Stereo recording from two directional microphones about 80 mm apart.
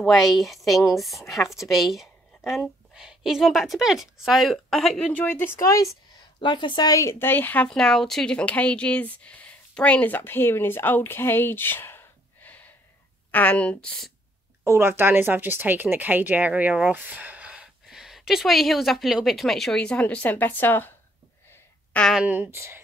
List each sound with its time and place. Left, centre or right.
0.0 s speech: centre
5.0 s speech: left
5.6 s speech: left
6.4 s a woman's voice: left
6.9 s speech: left
7.6 s speech: centre; by 12.0 s left
13.3 s speech: centre
14.6 s speech: right; by 17.6 s centre
17.8 s speech: centre; by 20.9 s left
21.9 s speech: centre
22.3 s speech: right